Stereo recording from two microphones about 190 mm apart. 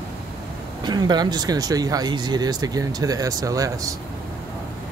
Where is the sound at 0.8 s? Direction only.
20° right (ahead or behind).